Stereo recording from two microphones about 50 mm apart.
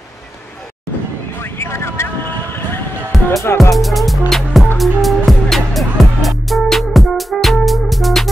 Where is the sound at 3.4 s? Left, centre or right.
Left.